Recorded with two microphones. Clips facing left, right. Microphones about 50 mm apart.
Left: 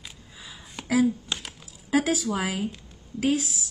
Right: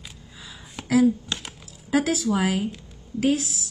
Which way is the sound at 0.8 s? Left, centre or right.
Centre.